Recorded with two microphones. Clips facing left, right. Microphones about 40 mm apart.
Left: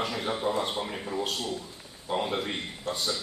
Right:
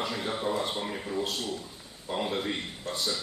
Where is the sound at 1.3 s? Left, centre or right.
Left.